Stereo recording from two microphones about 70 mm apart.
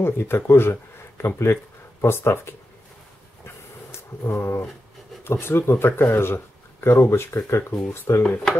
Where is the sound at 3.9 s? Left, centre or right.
Left.